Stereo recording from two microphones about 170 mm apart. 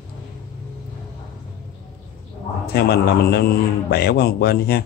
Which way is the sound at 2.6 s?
70° left (ahead or behind).